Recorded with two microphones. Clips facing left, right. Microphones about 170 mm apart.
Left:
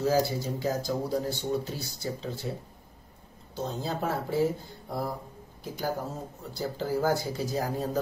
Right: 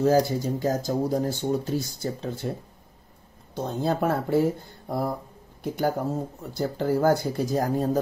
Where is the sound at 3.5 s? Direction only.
55° right (ahead or behind).